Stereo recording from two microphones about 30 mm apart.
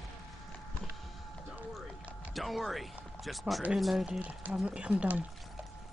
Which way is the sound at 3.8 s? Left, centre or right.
Centre.